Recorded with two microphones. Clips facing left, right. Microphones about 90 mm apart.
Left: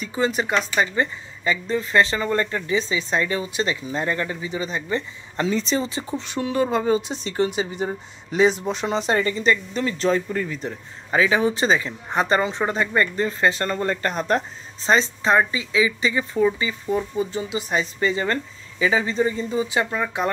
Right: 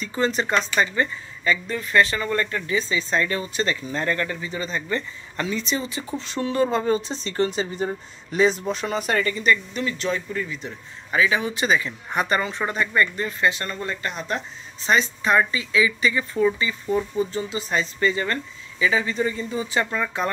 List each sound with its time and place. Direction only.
0.0 s speech: 10° left (ahead or behind)
5.5 s speech: 35° left (ahead or behind)
18.2 s speech: 30° left (ahead or behind)